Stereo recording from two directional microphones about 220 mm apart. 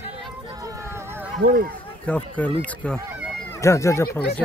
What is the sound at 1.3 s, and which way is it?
Speech, 45° right (ahead or behind).